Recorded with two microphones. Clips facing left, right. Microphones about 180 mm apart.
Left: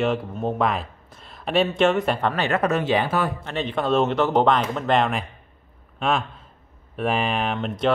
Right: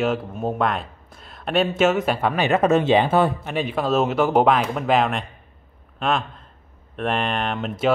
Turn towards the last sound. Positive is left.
turn(degrees=-5)  # may be behind; listen again after turning